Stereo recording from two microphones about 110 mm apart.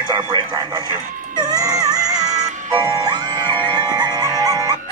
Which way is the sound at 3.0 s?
35° right (ahead or behind).